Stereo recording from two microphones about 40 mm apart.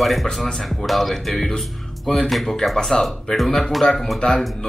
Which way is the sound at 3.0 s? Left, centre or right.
Centre.